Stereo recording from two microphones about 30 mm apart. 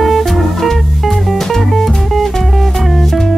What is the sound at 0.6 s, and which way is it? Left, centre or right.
Music, centre.